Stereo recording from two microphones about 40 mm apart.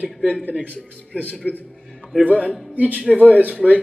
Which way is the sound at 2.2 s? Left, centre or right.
Right.